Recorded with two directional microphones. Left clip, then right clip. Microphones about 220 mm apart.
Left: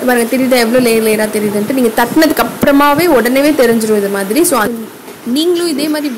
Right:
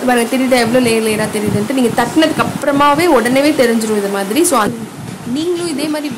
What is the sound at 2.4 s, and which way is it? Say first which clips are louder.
Speech: left 3 dB; 25° left (ahead or behind).